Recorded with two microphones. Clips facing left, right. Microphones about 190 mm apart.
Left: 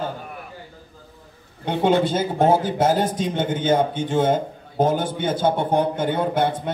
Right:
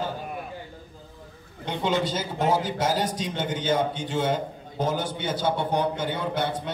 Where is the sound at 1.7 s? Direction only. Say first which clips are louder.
Left 7 dB; 55° left (ahead or behind).